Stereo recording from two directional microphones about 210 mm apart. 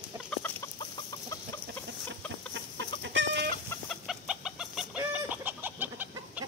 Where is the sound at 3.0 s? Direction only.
60° right (ahead or behind).